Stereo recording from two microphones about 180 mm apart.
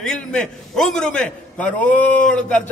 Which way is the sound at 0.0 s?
5° left (ahead or behind).